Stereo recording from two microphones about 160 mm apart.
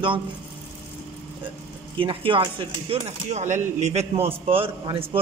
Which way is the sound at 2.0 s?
35° right (ahead or behind).